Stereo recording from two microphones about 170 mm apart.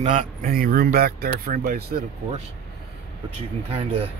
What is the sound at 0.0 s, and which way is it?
Speech, 45° right (ahead or behind).